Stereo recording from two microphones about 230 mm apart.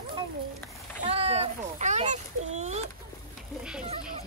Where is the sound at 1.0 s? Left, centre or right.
Right.